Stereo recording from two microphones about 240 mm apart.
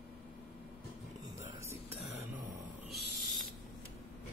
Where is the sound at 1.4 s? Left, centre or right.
Centre.